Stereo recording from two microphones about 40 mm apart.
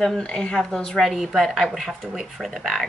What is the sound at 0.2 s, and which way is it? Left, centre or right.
Speech, left.